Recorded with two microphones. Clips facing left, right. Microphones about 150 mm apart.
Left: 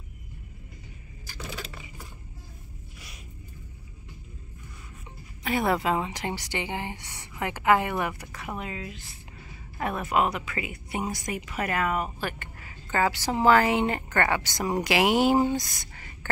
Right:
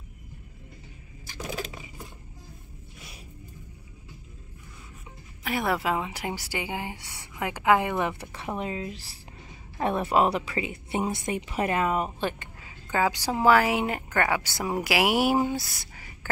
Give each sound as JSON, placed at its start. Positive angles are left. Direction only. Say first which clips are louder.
{"t": 5.4, "sound": "speech", "louder": "left 2 dB", "side_deg": 0}
{"t": 8.0, "sound": "a woman's voice", "louder": "right 2 dB", "side_deg": -25}
{"t": 12.2, "sound": "a sound", "louder": "right 3 dB", "side_deg": -20}
{"t": 13.4, "sound": "speech", "louder": "even", "side_deg": -10}